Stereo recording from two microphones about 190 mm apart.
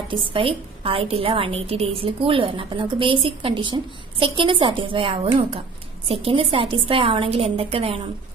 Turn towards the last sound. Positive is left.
turn(degrees=-30)  # may be behind; listen again after turning